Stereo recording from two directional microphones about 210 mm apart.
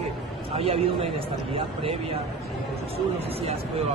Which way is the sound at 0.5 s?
25° right (ahead or behind).